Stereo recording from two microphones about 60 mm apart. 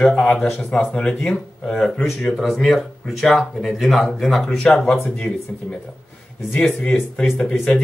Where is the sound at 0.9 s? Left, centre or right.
Centre.